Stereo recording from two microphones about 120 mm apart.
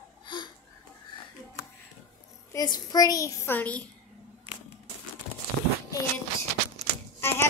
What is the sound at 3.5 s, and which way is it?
Speech, 15° left (ahead or behind).